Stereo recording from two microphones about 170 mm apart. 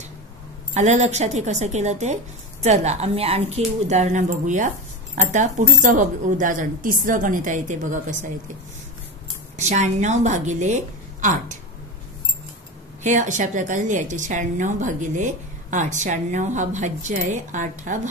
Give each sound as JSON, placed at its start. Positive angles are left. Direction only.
{"t": 0.7, "sound": "a woman's voice", "side_deg": -45}
{"t": 9.6, "sound": "a woman's voice", "side_deg": -45}
{"t": 13.0, "sound": "a woman's voice", "side_deg": -45}